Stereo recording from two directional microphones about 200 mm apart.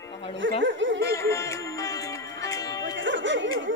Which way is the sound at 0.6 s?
65° right (ahead or behind).